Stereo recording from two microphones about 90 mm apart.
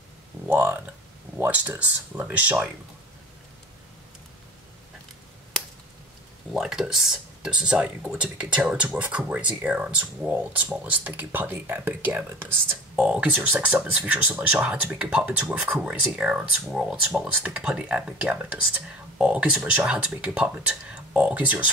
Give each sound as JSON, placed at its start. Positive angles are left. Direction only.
{"t": 0.5, "sound": "a sound", "side_deg": -25}
{"t": 1.5, "sound": "speech", "side_deg": -15}
{"t": 6.5, "sound": "speech", "side_deg": -5}